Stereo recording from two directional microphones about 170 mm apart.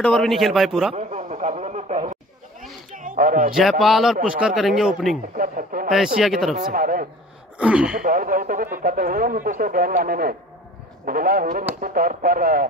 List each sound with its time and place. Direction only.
0.0 s a man's voice: centre (ahead or behind)
0.9 s a sound: 45° right (ahead or behind)
3.8 s a man's voice: centre (ahead or behind)
5.3 s speech: 55° right (ahead or behind)
6.1 s a man's voice: centre (ahead or behind)
6.6 s speech: 55° right (ahead or behind)
7.5 s speech: 5° right (ahead or behind)
8.0 s speech: 55° right (ahead or behind)